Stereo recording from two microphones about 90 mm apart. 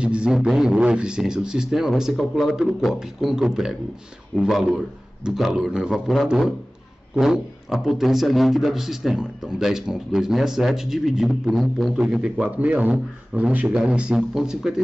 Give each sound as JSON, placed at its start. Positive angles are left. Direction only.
{"t": 0.0, "sound": "a man's voice", "side_deg": -10}